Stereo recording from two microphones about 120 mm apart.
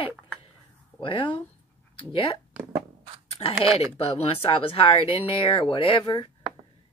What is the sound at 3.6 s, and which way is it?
Speech, 55° left (ahead or behind).